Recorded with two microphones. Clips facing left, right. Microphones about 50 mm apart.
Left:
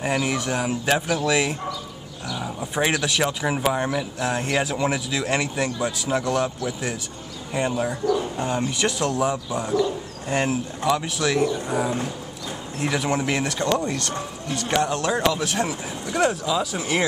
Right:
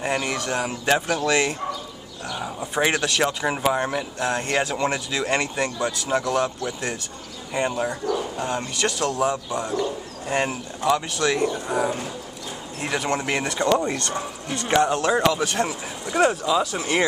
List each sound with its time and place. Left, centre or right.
0.0 s speech: centre
10.2 s speech: centre
12.9 s speech: centre